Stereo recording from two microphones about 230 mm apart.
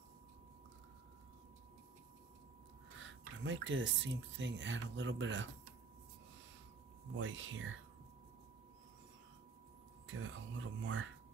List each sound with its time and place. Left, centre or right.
3.0 s speech: right
7.2 s speech: right
10.0 s speech: right